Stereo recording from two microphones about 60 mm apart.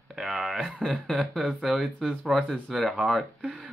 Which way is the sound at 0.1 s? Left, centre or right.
Centre.